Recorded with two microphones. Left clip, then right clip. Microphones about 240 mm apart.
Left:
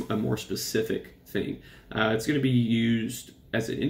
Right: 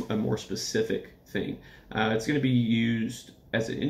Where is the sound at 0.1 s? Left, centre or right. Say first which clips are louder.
Left 1 dB; centre.